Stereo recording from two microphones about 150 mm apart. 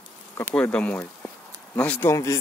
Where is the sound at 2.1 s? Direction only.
20° left (ahead or behind).